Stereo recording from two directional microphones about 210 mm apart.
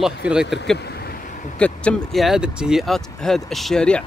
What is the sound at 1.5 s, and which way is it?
Speech, 5° left (ahead or behind).